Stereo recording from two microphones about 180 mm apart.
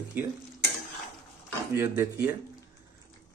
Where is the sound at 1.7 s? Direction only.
15° right (ahead or behind).